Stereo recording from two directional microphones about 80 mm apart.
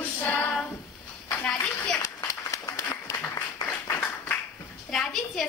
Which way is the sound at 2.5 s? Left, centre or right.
Left.